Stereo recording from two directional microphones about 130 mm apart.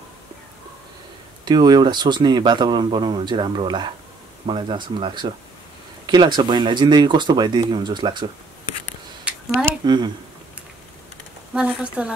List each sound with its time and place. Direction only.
1.4 s speech: 35° right (ahead or behind)
9.8 s speech: 35° right (ahead or behind)
11.5 s speech: 10° right (ahead or behind)